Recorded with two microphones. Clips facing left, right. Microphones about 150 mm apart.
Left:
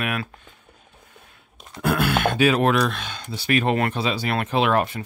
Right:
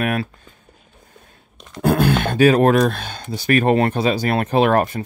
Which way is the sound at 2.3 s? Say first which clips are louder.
Right 7 dB; 40° right (ahead or behind).